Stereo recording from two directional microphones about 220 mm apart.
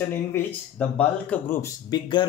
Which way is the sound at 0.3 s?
5° left (ahead or behind).